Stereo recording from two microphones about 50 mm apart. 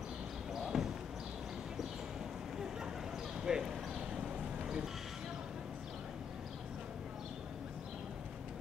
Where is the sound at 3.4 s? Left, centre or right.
Centre.